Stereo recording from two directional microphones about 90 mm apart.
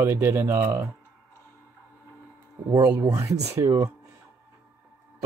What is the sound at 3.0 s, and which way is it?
Speech, 35° right (ahead or behind).